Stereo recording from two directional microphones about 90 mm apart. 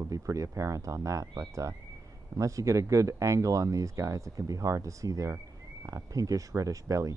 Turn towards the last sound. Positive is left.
turn(degrees=-35)  # may be behind; listen again after turning